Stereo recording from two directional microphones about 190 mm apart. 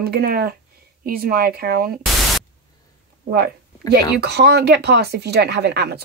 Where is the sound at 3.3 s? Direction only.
55° right (ahead or behind).